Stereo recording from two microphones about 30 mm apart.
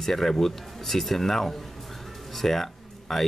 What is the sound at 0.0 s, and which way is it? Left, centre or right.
Speech, centre.